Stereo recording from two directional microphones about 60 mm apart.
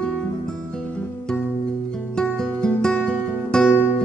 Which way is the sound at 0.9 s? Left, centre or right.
Left.